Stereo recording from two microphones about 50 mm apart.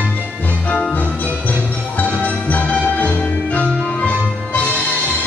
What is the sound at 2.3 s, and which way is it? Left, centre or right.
Music, left.